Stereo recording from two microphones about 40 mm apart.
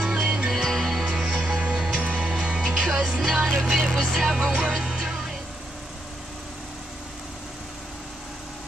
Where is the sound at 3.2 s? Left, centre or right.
Centre.